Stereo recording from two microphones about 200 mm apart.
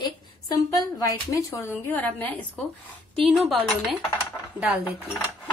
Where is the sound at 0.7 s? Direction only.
15° left (ahead or behind).